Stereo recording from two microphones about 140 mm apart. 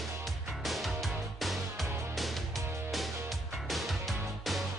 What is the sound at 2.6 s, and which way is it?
Music, 20° right (ahead or behind).